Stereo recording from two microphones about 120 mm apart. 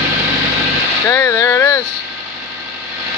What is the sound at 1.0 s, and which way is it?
Speech, 20° left (ahead or behind).